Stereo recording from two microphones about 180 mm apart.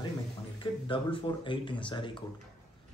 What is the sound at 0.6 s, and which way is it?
Speech, 30° left (ahead or behind).